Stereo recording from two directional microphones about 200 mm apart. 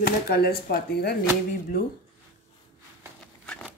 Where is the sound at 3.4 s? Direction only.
5° left (ahead or behind).